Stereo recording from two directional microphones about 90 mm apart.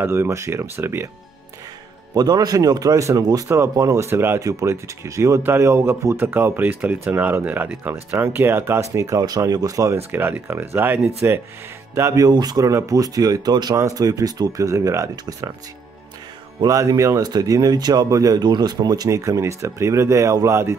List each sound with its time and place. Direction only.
0.0 s speech: 25° right (ahead or behind)
2.1 s speech: 45° right (ahead or behind)
3.4 s speech: 30° right (ahead or behind)
4.4 s speech: 40° right (ahead or behind)
10.1 s speech: 20° right (ahead or behind)
12.3 s speech: 45° right (ahead or behind)
16.6 s speech: 35° right (ahead or behind)